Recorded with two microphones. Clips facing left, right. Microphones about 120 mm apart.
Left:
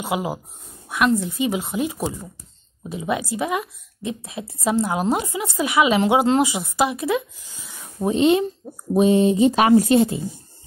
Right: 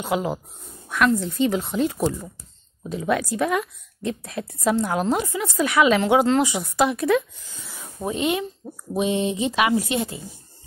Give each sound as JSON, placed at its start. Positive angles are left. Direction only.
{"t": 0.0, "sound": "speech", "side_deg": 10}
{"t": 5.0, "sound": "speech", "side_deg": 15}
{"t": 8.0, "sound": "a woman's voice", "side_deg": 25}
{"t": 8.9, "sound": "speech", "side_deg": 40}